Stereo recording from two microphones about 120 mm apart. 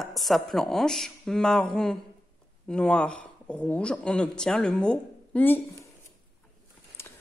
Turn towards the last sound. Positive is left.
turn(degrees=20)  # may be behind; listen again after turning